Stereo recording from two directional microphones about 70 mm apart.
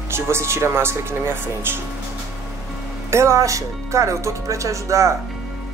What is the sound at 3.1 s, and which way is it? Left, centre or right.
Speech, right.